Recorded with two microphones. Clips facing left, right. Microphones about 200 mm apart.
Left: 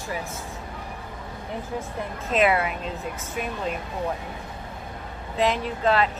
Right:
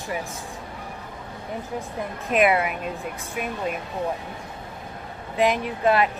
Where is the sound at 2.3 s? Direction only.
15° right (ahead or behind).